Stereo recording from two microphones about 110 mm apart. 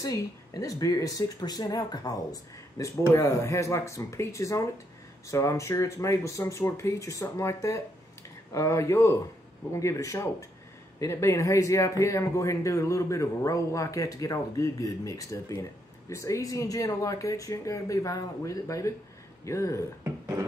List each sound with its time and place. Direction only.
0.0 s speech: 30° left (ahead or behind)
20.0 s speech: 25° right (ahead or behind)